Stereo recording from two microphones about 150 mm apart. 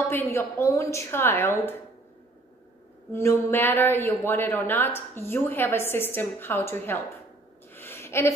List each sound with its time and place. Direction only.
0.1 s speech: 15° left (ahead or behind)
3.1 s speech: 20° left (ahead or behind)
7.7 s a sound: 15° left (ahead or behind)